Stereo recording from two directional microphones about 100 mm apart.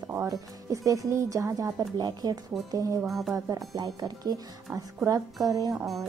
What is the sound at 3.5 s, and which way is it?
Speech, 35° right (ahead or behind).